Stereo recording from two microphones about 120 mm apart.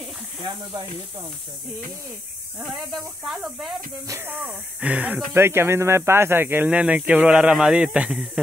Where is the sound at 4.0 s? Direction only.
20° right (ahead or behind).